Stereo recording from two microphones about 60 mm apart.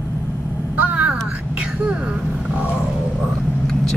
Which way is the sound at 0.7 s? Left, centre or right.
Right.